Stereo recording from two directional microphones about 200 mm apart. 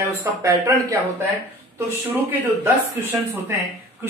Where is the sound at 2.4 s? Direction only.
15° right (ahead or behind).